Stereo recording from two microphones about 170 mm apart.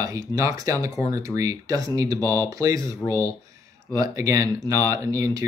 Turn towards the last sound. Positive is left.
turn(degrees=-20)  # may be behind; listen again after turning